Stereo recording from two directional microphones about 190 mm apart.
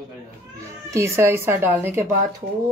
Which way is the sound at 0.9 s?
15° right (ahead or behind).